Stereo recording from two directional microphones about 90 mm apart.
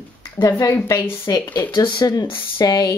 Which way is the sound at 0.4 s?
45° left (ahead or behind).